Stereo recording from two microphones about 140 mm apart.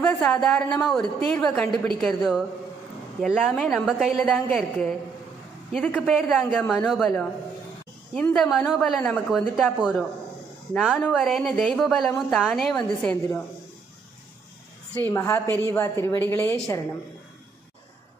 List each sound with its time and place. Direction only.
0.0 s speech: 5° left (ahead or behind)
15.0 s a woman's voice: 15° left (ahead or behind)